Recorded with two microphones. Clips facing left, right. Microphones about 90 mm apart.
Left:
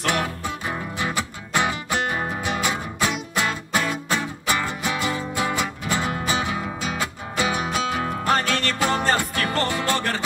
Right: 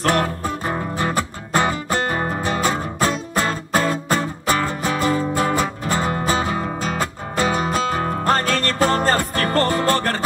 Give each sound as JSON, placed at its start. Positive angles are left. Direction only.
{"t": 0.0, "sound": "music", "side_deg": -40}